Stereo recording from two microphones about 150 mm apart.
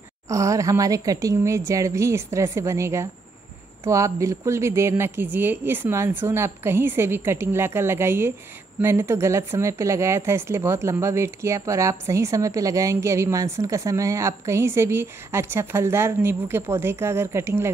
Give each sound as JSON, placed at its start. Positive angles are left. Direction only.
{"t": 0.3, "sound": "a woman's voice", "side_deg": -20}